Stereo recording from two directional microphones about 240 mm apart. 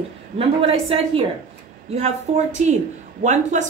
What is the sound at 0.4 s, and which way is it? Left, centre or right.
Speech, right.